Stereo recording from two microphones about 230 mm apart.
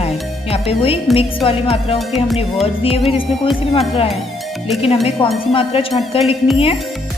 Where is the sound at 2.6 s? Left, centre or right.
Left.